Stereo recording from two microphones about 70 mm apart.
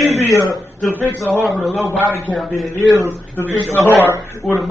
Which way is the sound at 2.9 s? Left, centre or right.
Left.